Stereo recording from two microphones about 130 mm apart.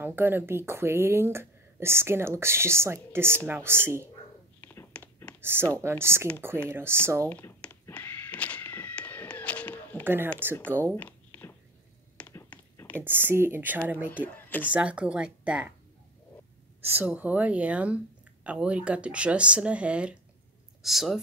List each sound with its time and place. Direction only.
0.0 s speech: 15° right (ahead or behind)
4.6 s whispering: 15° left (ahead or behind)
5.4 s speech: 20° right (ahead or behind)
7.2 s a sound: 15° left (ahead or behind)
10.0 s speech: 15° right (ahead or behind)
11.0 s a sound: 15° left (ahead or behind)
12.9 s speech: 15° right (ahead or behind)
14.3 s speech: 15° left (ahead or behind)
14.7 s speech: 10° right (ahead or behind)
16.8 s speech: 15° right (ahead or behind)